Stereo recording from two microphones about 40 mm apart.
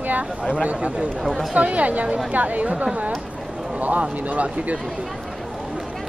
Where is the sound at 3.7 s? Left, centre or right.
Right.